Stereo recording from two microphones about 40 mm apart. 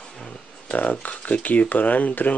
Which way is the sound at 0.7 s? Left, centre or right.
Left.